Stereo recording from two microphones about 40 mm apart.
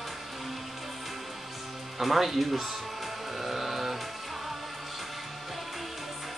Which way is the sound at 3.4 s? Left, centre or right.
Centre.